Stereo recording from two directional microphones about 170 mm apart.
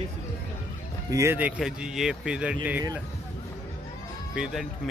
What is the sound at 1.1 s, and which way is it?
Speech, 15° right (ahead or behind).